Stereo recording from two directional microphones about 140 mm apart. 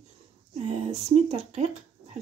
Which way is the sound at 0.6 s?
50° right (ahead or behind).